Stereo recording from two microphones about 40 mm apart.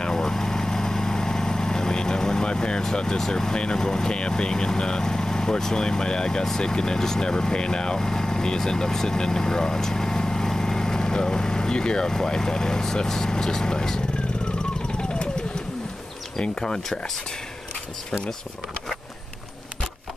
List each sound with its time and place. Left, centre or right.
0.0 s vehicle: centre
6.6 s speech: centre
16.3 s speech: centre